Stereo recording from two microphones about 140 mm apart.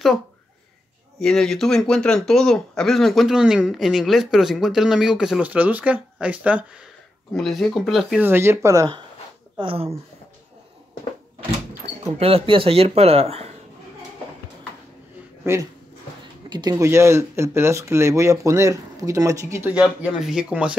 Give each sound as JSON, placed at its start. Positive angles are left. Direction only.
{"t": 1.2, "sound": "speech", "side_deg": 5}
{"t": 7.3, "sound": "speech", "side_deg": 0}
{"t": 8.2, "sound": "speech", "side_deg": -15}
{"t": 9.6, "sound": "speech", "side_deg": -40}
{"t": 12.2, "sound": "speech", "side_deg": -45}
{"t": 15.4, "sound": "speech", "side_deg": -20}
{"t": 16.4, "sound": "speech", "side_deg": -30}